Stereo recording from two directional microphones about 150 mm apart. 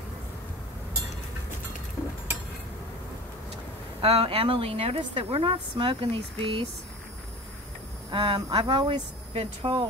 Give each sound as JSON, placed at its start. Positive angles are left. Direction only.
{"t": 4.0, "sound": "a woman's voice", "side_deg": -40}
{"t": 8.1, "sound": "a woman's voice", "side_deg": -35}